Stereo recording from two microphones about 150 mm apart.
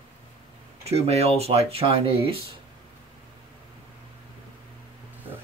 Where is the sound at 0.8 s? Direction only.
45° right (ahead or behind).